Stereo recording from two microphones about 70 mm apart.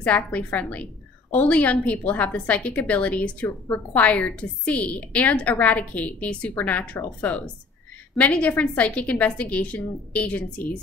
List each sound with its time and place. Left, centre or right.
0.0 s a woman's voice: left